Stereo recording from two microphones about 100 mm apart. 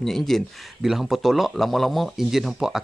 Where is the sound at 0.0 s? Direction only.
5° left (ahead or behind).